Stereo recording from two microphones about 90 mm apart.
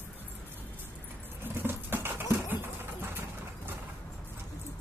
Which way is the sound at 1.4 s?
25° right (ahead or behind).